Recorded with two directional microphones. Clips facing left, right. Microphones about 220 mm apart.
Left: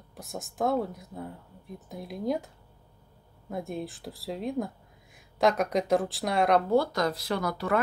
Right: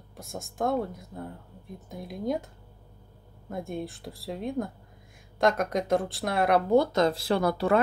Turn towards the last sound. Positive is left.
turn(degrees=-30)  # may be behind; listen again after turning